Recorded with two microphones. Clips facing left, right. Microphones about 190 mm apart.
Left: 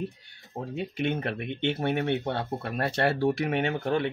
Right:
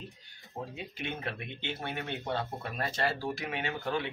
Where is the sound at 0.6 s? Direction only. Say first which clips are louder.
Left 8 dB; 55° left (ahead or behind).